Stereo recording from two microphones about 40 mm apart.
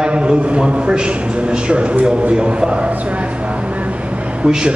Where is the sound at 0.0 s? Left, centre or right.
Right.